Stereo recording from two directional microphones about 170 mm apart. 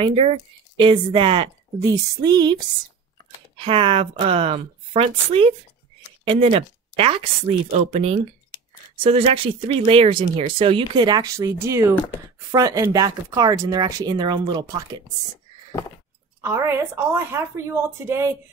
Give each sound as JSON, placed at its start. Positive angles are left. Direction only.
{"t": 0.0, "sound": "a woman's voice", "side_deg": -35}
{"t": 16.4, "sound": "speech", "side_deg": -15}